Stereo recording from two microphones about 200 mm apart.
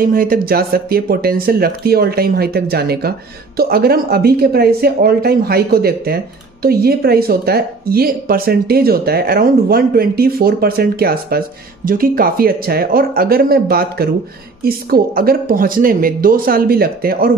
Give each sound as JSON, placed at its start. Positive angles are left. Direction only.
{"t": 0.0, "sound": "speech", "side_deg": -45}